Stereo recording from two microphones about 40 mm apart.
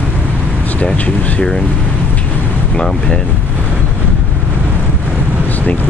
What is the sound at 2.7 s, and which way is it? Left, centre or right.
Speech, centre.